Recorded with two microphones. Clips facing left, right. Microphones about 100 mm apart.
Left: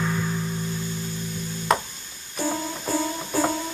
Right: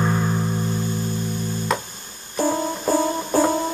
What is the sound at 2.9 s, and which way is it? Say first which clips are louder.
Music: right 6 dB; 40° right (ahead or behind).